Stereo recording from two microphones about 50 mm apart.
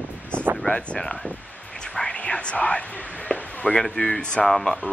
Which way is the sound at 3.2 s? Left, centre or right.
Centre.